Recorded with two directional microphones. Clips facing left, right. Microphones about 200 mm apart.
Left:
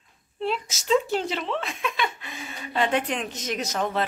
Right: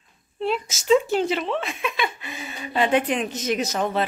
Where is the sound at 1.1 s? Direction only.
5° right (ahead or behind).